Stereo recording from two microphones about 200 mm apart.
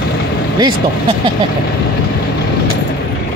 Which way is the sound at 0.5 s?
20° right (ahead or behind).